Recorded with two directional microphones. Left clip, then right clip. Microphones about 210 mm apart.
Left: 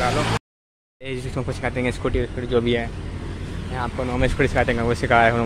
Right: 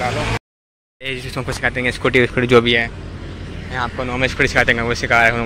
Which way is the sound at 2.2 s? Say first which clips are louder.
Right 12 dB; 25° right (ahead or behind).